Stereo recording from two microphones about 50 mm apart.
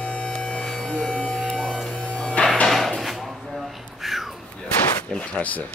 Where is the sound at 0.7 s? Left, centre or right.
Centre.